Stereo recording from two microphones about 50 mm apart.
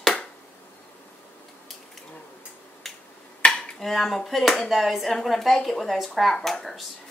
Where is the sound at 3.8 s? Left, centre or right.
Centre.